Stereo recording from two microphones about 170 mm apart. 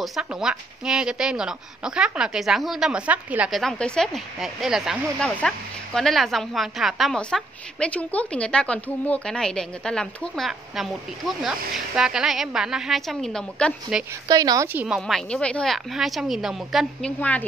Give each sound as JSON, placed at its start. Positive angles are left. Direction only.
{"t": 0.0, "sound": "a woman's voice", "side_deg": 0}
{"t": 14.2, "sound": "a woman's voice", "side_deg": -20}
{"t": 15.0, "sound": "a woman's voice", "side_deg": 0}